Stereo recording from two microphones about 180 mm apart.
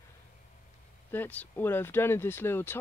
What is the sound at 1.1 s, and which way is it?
Speech, 10° left (ahead or behind).